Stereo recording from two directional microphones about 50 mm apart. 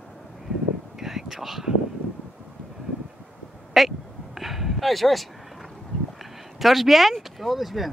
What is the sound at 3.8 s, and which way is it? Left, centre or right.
Speech, centre.